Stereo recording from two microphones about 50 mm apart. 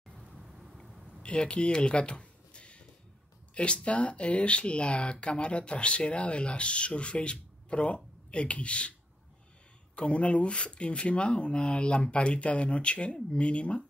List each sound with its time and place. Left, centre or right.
0.1 s vehicle: centre
1.2 s speech: left
9.9 s speech: left